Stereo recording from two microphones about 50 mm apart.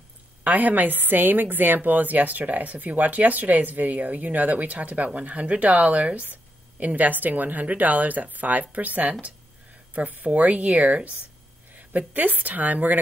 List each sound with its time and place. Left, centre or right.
0.4 s a woman's voice: right